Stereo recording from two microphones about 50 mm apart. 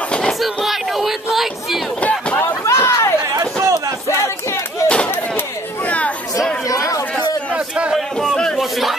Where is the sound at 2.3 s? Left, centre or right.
Left.